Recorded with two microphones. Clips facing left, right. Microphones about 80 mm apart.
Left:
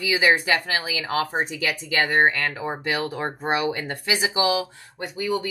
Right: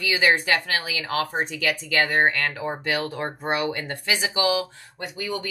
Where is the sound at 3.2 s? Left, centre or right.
Left.